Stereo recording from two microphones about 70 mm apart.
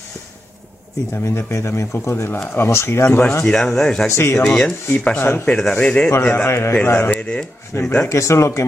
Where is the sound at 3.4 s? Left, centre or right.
Centre.